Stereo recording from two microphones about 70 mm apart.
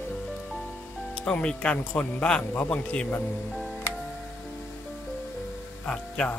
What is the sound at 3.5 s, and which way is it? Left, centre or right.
Music, centre.